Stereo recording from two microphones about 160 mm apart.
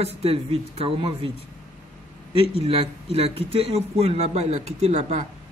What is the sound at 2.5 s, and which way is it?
Speech, 35° right (ahead or behind).